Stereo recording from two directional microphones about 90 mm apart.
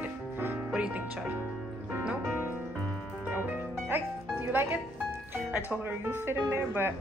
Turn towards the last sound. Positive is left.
turn(degrees=-25)  # may be behind; listen again after turning